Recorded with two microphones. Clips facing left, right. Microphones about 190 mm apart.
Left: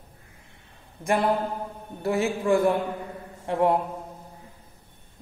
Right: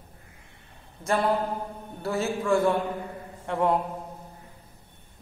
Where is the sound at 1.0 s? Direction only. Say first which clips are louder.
Left 1 dB; 15° left (ahead or behind).